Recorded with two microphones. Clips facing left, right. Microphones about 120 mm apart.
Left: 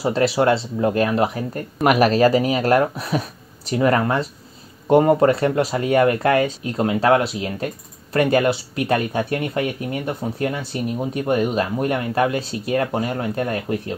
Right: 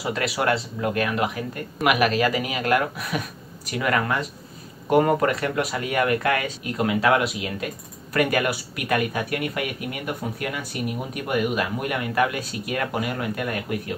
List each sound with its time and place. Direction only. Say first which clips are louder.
0.0 s speech: left 7 dB; 30° left (ahead or behind)